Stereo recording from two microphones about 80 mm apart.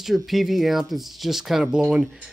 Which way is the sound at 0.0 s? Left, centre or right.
Centre.